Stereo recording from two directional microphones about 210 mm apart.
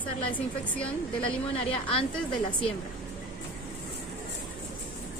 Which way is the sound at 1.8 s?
25° left (ahead or behind).